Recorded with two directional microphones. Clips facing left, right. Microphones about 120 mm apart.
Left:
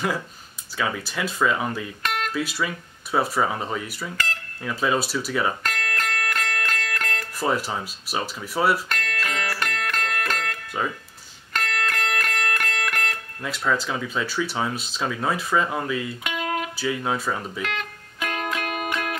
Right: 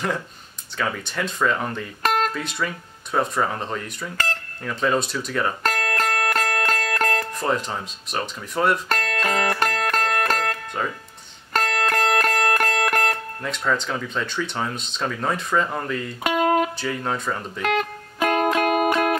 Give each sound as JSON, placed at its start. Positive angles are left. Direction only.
{"t": 0.7, "sound": "speech", "side_deg": 5}
{"t": 2.0, "sound": "music", "side_deg": -40}
{"t": 2.3, "sound": "speech", "side_deg": 5}
{"t": 5.6, "sound": "music", "side_deg": -40}
{"t": 7.3, "sound": "speech", "side_deg": 5}
{"t": 8.8, "sound": "music", "side_deg": -40}
{"t": 13.4, "sound": "speech", "side_deg": 5}
{"t": 16.3, "sound": "music", "side_deg": -40}
{"t": 16.7, "sound": "speech", "side_deg": 5}
{"t": 17.6, "sound": "music", "side_deg": -40}